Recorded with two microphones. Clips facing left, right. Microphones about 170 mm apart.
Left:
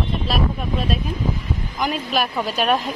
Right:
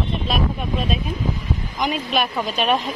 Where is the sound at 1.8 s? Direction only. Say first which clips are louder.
Even; centre (ahead or behind).